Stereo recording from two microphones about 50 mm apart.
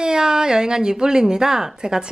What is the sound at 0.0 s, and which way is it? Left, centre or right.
Speech, centre.